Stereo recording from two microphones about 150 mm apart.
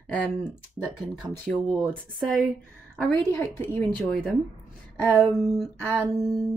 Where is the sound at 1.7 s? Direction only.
Centre (ahead or behind).